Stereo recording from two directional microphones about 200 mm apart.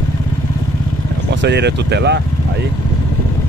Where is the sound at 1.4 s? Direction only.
60° right (ahead or behind).